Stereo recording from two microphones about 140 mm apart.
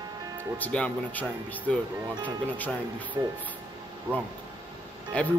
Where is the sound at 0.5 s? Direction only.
10° left (ahead or behind).